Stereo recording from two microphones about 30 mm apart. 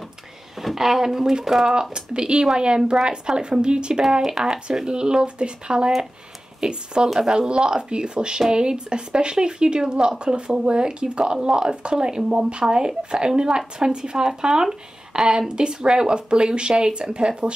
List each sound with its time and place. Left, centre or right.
0.6 s speech: centre
1.7 s speech: right
4.4 s speech: centre
4.8 s speech: right
12.6 s speech: right